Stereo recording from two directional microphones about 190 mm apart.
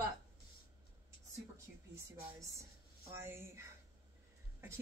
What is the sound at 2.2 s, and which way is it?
Speech, 15° right (ahead or behind).